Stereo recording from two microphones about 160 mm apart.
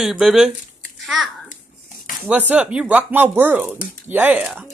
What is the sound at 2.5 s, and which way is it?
Speech, 5° right (ahead or behind).